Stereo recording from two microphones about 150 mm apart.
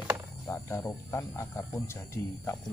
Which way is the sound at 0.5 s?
20° left (ahead or behind).